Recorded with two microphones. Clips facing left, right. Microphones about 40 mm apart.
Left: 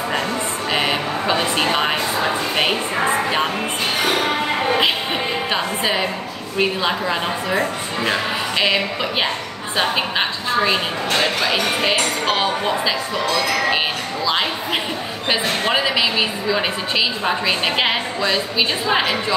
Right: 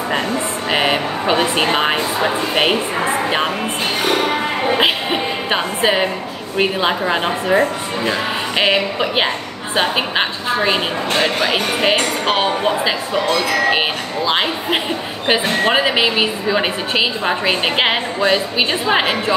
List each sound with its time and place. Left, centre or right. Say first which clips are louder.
0.7 s a woman's voice: right 3 dB; centre
5.5 s a woman's voice: right 6 dB; right
15.2 s a woman's voice: right 4 dB; right